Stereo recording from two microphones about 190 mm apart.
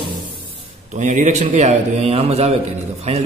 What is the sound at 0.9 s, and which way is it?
A man's voice, 40° right (ahead or behind).